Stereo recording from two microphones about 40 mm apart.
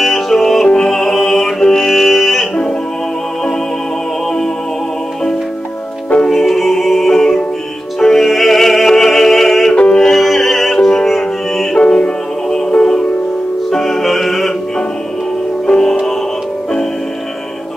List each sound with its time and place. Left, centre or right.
0.0 s music: centre
1.6 s music: centre
1.9 s music: centre
6.3 s music: centre
9.8 s music: left
10.0 s music: centre
11.8 s music: left
13.7 s music: centre
15.7 s music: left